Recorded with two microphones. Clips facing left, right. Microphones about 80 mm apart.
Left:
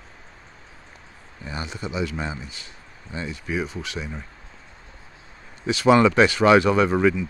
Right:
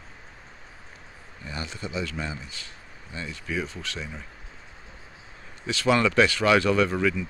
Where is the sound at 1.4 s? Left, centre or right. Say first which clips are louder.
Left 3 dB; left.